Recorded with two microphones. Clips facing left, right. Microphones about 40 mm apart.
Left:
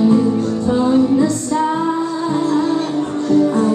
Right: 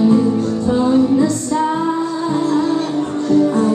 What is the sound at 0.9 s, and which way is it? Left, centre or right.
Music, centre.